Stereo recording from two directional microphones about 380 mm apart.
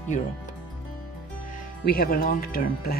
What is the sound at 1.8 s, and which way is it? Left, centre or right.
Speech, left.